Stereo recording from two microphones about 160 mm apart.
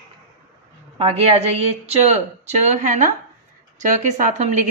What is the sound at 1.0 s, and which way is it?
Speech, 40° right (ahead or behind).